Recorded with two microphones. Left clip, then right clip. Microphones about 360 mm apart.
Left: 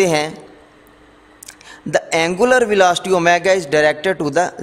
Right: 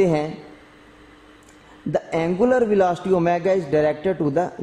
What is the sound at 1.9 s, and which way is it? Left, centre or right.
A man's voice, left.